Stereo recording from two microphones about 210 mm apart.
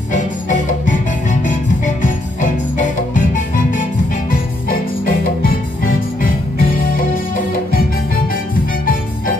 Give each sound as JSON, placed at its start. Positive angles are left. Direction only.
{"t": 0.1, "sound": "music", "side_deg": 35}